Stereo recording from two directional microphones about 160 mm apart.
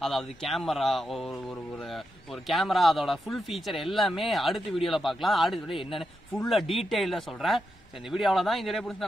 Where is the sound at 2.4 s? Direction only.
Centre (ahead or behind).